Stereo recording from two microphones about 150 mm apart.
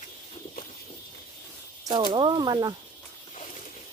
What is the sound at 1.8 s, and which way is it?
Speech, 30° right (ahead or behind).